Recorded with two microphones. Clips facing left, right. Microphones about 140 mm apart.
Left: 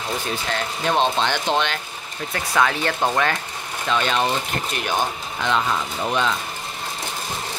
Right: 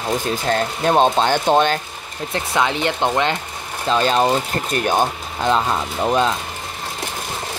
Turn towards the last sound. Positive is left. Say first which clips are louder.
# right 5 dB
turn(degrees=-30)  # may be behind; listen again after turning